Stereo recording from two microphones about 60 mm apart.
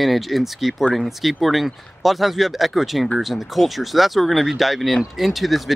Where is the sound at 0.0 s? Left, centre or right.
Centre.